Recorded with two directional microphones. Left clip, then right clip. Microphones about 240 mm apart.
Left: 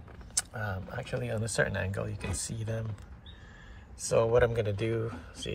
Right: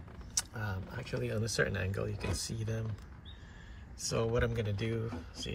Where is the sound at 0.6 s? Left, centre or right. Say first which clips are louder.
Left 5 dB; centre.